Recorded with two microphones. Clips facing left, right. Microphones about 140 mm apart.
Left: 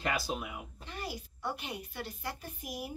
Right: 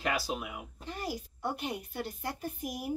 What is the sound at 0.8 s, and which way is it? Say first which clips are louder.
A child's voice: right 5 dB; 40° right (ahead or behind).